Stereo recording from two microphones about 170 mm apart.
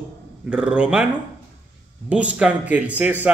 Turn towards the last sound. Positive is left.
turn(degrees=-10)  # may be behind; listen again after turning